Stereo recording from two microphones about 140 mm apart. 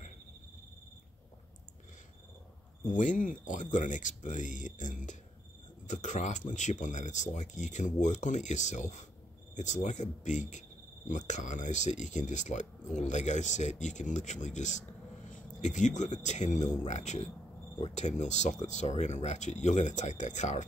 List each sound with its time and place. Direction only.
2.8 s speech: 65° left (ahead or behind)